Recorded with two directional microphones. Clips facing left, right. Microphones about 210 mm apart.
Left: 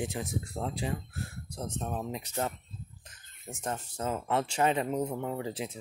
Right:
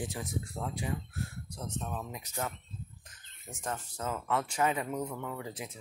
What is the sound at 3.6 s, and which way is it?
Speech, 25° left (ahead or behind).